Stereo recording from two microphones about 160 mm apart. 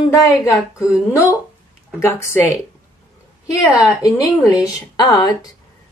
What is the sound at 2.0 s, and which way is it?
A woman's voice, 15° left (ahead or behind).